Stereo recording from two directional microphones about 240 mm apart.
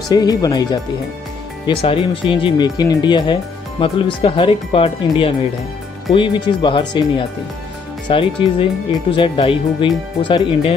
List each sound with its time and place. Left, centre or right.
0.1 s speech: centre